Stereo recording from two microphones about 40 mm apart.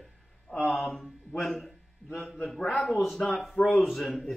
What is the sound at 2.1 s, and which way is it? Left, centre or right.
Speech, left.